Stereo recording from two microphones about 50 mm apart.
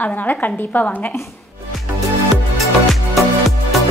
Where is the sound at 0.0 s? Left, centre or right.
Left.